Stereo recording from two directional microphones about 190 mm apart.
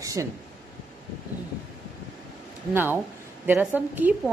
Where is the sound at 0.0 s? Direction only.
15° right (ahead or behind).